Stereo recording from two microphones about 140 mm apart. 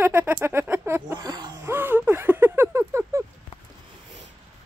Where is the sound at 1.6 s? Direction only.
15° right (ahead or behind).